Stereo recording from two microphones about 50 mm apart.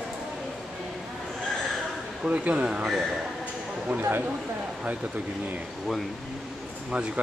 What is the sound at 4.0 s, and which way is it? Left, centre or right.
Speech, right.